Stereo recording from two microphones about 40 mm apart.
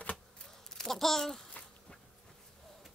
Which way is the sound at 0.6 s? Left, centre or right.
Centre.